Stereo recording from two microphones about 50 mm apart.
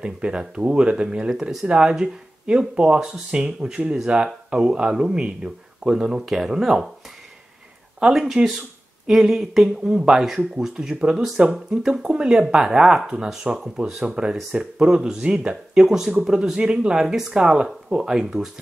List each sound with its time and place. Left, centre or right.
0.0 s speech: centre
8.0 s speech: centre